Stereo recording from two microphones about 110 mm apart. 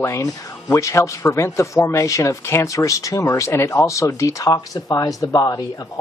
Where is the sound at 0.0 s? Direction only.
25° left (ahead or behind).